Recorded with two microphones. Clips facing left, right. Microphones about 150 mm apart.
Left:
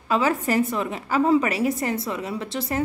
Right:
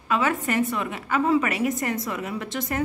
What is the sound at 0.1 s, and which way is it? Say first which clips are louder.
A woman's voice: left 2 dB; 35° left (ahead or behind).